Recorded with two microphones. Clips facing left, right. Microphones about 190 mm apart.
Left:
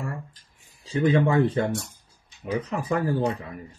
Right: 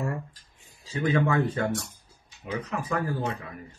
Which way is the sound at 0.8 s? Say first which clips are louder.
Left 4 dB; 30° left (ahead or behind).